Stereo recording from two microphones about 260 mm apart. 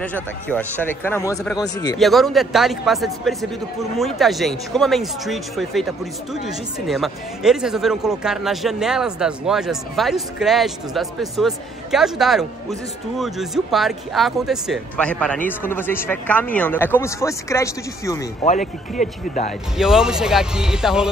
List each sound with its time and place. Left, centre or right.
0.0 s speech: centre
2.0 s speech: centre
18.4 s speech: left
19.8 s speech: centre